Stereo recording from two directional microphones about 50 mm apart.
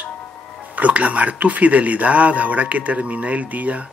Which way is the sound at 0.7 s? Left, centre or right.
Right.